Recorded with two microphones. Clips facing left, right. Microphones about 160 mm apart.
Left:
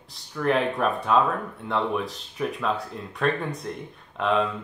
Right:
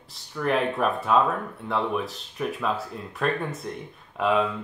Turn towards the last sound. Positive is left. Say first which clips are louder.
# right 1 dB
turn(degrees=-5)  # may be behind; listen again after turning